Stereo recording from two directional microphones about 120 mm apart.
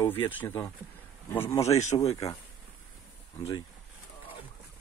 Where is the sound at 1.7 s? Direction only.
70° left (ahead or behind).